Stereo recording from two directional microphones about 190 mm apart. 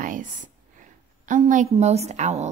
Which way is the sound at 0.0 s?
45° right (ahead or behind).